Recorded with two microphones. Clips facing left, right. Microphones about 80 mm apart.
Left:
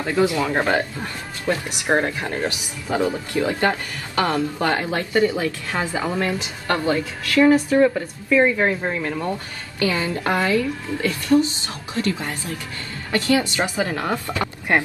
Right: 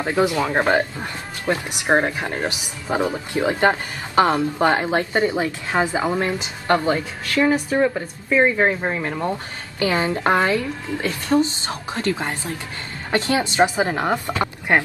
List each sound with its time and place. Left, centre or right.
0.0 s speech: right